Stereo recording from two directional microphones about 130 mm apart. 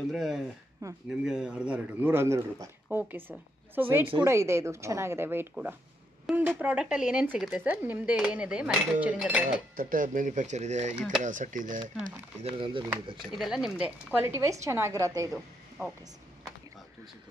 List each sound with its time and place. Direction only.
0.1 s speech: centre (ahead or behind)
0.8 s speech: 25° right (ahead or behind)
1.2 s speech: 5° right (ahead or behind)
9.8 s speech: 90° right; by 11.0 s 65° right (ahead or behind)
11.2 s speech: 75° right (ahead or behind)
12.4 s speech: 40° right (ahead or behind)
13.3 s speech: 5° right (ahead or behind)
14.2 s speech: 20° right (ahead or behind)